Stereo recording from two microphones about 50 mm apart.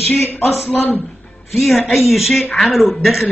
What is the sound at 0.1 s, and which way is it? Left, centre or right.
Speech, left.